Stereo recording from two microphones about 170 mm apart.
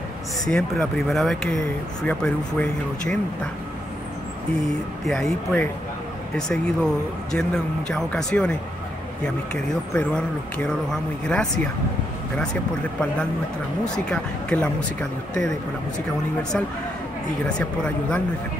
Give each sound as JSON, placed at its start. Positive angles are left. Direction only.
{"t": 0.5, "sound": "speech", "side_deg": 5}
{"t": 5.0, "sound": "speech", "side_deg": 5}
{"t": 13.8, "sound": "speech", "side_deg": 5}
{"t": 17.4, "sound": "speech", "side_deg": 5}